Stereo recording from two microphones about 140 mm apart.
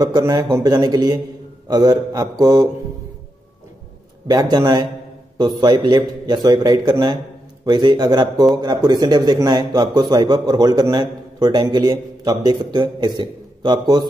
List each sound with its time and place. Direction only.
0.0 s a man's voice: 25° right (ahead or behind)
4.3 s a man's voice: 25° right (ahead or behind)